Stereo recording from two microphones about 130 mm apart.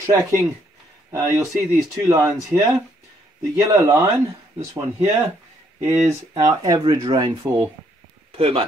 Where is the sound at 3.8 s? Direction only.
30° right (ahead or behind).